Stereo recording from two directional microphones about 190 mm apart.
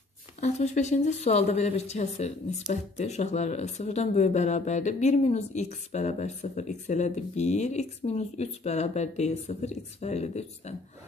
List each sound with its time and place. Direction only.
0.4 s speech: 35° left (ahead or behind)